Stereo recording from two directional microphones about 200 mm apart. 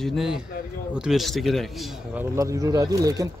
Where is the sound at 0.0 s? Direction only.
Centre (ahead or behind).